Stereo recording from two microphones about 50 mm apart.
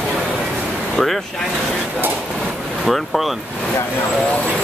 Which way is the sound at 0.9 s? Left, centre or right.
Centre.